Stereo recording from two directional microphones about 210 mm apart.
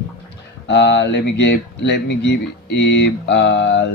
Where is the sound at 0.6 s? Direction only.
55° left (ahead or behind).